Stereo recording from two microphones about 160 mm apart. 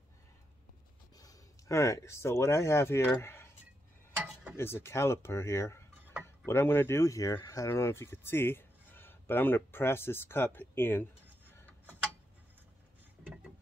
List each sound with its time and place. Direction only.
1.1 s speech: 20° left (ahead or behind)
4.6 s speech: 15° left (ahead or behind)